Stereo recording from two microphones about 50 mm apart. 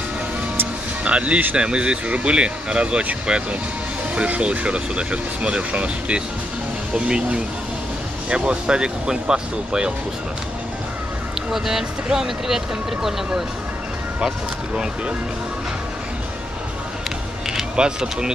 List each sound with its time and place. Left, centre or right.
1.0 s speech: right
11.5 s speech: centre
17.6 s speech: centre